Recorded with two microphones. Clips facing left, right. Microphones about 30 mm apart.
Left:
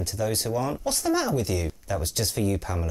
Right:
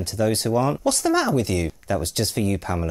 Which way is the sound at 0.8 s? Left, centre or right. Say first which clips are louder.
Right 5 dB; right.